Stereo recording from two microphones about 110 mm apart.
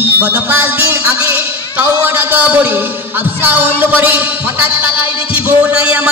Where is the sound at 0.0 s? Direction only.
15° right (ahead or behind).